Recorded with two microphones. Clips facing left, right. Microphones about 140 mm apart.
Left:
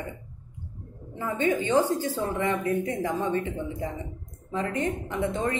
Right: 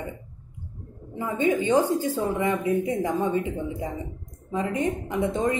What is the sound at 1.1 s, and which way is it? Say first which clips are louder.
Speech: right 2 dB; 15° right (ahead or behind).